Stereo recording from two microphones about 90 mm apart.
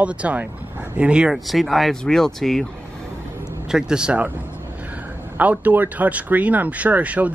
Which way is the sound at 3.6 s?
5° right (ahead or behind).